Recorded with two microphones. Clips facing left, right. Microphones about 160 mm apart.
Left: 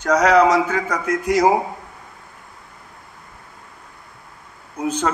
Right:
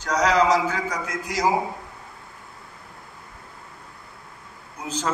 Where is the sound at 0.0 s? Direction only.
60° left (ahead or behind).